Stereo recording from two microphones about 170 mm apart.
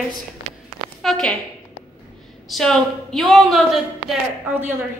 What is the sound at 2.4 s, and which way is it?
A woman's voice, centre (ahead or behind).